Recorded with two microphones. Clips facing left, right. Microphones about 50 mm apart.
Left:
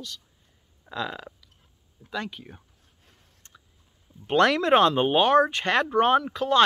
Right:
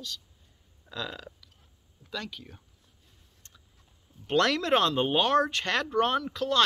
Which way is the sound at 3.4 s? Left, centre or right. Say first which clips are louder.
Left 5 dB; left.